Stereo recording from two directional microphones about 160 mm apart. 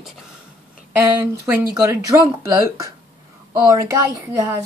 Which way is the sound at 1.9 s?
20° right (ahead or behind).